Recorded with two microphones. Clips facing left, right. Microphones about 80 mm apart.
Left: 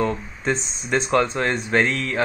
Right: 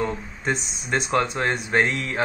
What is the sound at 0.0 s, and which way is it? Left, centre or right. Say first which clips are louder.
A man's voice: left 3 dB; centre.